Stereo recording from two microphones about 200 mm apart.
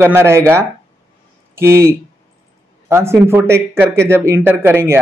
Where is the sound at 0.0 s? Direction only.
10° right (ahead or behind).